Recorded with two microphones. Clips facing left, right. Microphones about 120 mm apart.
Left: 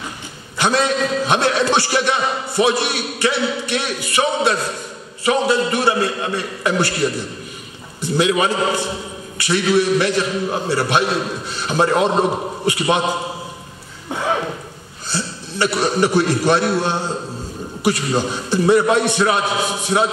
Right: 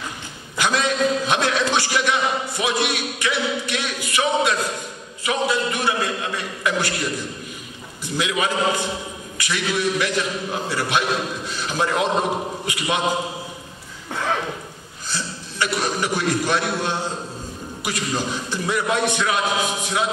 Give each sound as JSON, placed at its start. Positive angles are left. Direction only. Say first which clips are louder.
{"t": 0.6, "sound": "a man's voice", "louder": "left 3 dB", "side_deg": 35}
{"t": 15.0, "sound": "a man's voice", "louder": "left 4 dB", "side_deg": 30}